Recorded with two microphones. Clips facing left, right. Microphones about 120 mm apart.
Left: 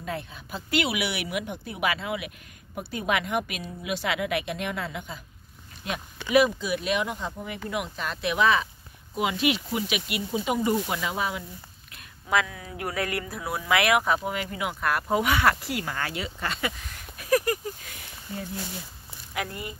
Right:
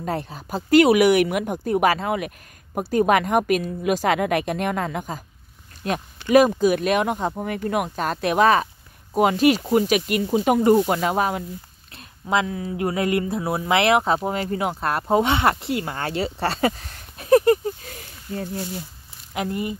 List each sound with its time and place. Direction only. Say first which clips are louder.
0.0 s speech: right 7 dB; 40° right (ahead or behind)
11.9 s speech: right 3 dB; 25° right (ahead or behind)
17.8 s a sound: right 5 dB; 45° right (ahead or behind)
19.3 s speech: right 7 dB; 25° right (ahead or behind)